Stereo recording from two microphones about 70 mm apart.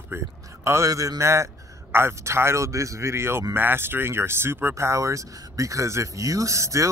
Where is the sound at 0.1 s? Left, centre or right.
Right.